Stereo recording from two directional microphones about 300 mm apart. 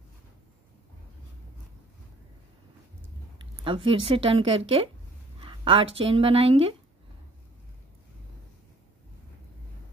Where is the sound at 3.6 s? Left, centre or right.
Centre.